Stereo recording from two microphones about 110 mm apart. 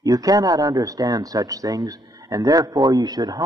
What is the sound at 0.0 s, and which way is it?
Speech, 35° right (ahead or behind).